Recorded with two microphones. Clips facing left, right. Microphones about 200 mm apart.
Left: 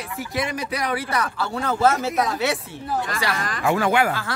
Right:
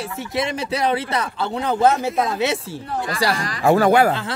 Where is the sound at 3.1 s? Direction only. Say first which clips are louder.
Right 4 dB; 35° right (ahead or behind).